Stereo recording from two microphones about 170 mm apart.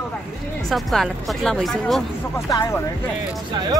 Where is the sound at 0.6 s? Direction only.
Centre (ahead or behind).